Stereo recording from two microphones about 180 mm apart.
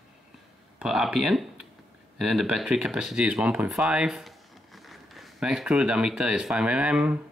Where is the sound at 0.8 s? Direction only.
Centre (ahead or behind).